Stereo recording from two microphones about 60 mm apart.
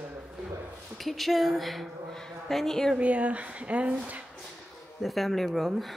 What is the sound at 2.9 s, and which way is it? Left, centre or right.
Speech, right.